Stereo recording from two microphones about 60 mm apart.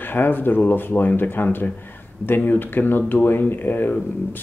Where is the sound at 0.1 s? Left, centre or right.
Left.